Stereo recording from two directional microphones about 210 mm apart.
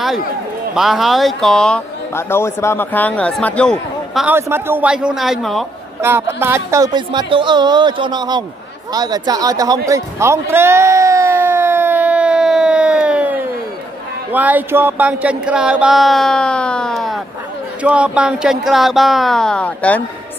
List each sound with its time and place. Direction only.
0.7 s a man's voice: centre (ahead or behind)
6.0 s speech: 10° right (ahead or behind)
9.8 s a sound: 15° right (ahead or behind)
14.3 s a man's voice: 10° right (ahead or behind)